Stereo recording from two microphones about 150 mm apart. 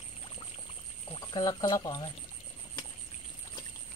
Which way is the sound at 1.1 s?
30° left (ahead or behind).